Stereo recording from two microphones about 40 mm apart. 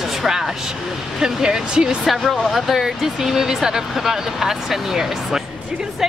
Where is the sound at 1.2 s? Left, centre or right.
Centre.